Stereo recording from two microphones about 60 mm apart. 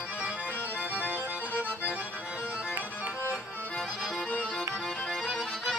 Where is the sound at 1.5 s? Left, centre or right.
Left.